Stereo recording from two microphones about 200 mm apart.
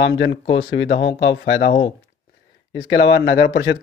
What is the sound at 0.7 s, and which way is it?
Speech, 60° left (ahead or behind).